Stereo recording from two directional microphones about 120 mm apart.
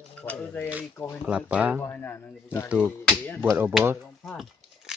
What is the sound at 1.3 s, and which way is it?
Speech, 10° right (ahead or behind).